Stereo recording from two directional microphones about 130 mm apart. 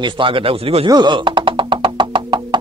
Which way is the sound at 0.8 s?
35° right (ahead or behind).